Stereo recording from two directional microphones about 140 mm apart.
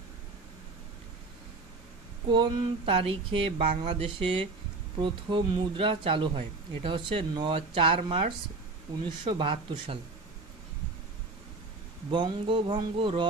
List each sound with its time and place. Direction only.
2.3 s speech: 35° right (ahead or behind)
8.9 s speech: 30° right (ahead or behind)
9.2 s speech: 40° right (ahead or behind)
12.1 s speech: 35° right (ahead or behind)